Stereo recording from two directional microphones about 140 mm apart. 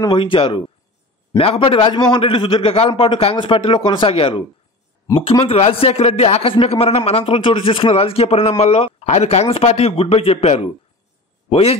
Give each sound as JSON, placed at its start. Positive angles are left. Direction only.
{"t": 0.0, "sound": "a man's voice", "side_deg": 40}